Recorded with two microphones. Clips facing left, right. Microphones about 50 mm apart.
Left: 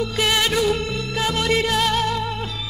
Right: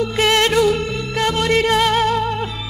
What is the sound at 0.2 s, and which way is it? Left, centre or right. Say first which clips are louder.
Music: right 5 dB; centre.